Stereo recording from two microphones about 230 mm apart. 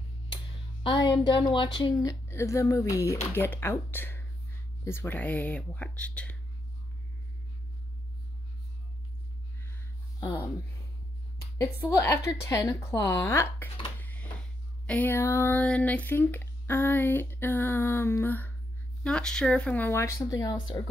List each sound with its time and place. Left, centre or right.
0.8 s speech: centre
11.5 s speech: centre
13.9 s a sound: centre
14.9 s speech: centre